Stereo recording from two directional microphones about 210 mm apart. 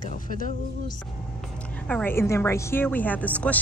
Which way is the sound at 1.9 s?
10° left (ahead or behind).